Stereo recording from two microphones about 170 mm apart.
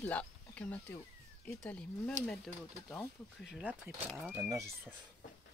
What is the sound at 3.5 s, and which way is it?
Speech, 10° right (ahead or behind).